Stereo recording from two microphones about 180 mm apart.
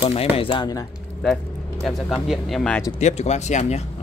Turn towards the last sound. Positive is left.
turn(degrees=40)  # may be behind; listen again after turning